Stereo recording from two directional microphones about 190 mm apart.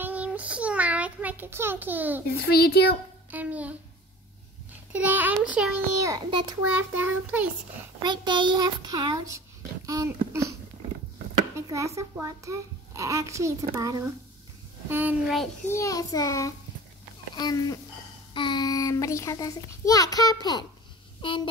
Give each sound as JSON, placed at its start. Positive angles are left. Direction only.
{"t": 0.0, "sound": "child singing", "side_deg": -10}
{"t": 2.3, "sound": "a child's voice", "side_deg": 55}
{"t": 3.3, "sound": "a child's voice", "side_deg": -10}
{"t": 4.9, "sound": "a child's voice", "side_deg": -10}
{"t": 5.9, "sound": "a child's voice", "side_deg": -20}
{"t": 6.7, "sound": "a child's voice", "side_deg": -10}
{"t": 8.0, "sound": "a child's voice", "side_deg": -25}
{"t": 11.5, "sound": "a child's voice", "side_deg": -15}
{"t": 15.7, "sound": "a child's voice", "side_deg": 15}